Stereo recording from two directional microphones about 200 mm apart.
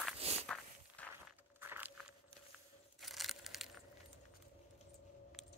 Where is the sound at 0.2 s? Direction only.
30° right (ahead or behind).